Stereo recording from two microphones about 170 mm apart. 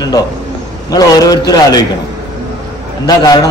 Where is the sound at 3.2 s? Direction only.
25° left (ahead or behind).